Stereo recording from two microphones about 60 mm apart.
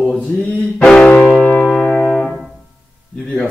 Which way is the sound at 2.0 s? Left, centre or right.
Centre.